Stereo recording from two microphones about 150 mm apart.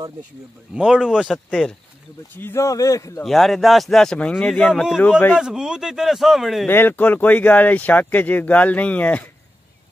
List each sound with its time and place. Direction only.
0.7 s speech: 5° right (ahead or behind)
2.3 s speech: 15° left (ahead or behind)
3.3 s speech: centre (ahead or behind)
5.4 s speech: 5° right (ahead or behind)
6.7 s speech: 15° left (ahead or behind)